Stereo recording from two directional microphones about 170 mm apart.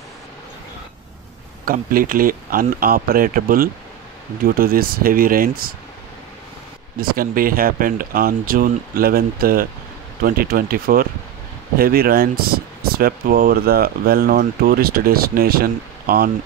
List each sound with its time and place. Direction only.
1.7 s speech: 55° right (ahead or behind)
7.0 s speech: 60° right (ahead or behind)